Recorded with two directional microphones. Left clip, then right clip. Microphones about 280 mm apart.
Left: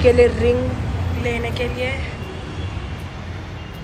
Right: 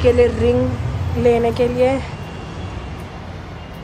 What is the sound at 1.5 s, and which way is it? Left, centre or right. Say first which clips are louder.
Speech: right 8 dB; centre.